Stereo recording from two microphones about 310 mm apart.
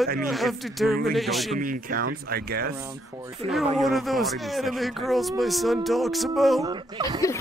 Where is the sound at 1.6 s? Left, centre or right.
Right.